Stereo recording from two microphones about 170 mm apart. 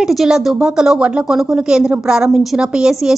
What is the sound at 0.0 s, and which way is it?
A woman's voice, centre (ahead or behind).